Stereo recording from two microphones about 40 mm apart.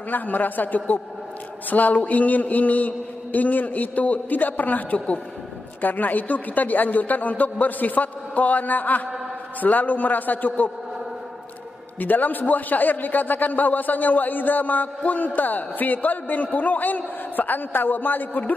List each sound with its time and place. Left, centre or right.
0.1 s a man's voice: left
12.0 s a man's voice: left